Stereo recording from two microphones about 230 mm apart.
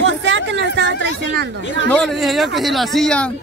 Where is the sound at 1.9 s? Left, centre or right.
Centre.